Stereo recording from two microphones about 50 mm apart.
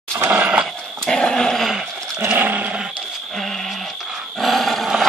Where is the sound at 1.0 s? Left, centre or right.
Centre.